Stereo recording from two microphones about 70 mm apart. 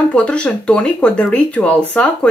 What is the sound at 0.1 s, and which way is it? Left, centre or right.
Speech, centre.